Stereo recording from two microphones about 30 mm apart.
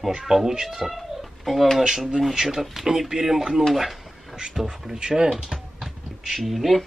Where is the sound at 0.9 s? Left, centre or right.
Centre.